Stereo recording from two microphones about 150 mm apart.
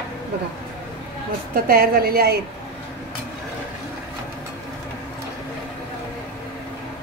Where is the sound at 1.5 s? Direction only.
85° right.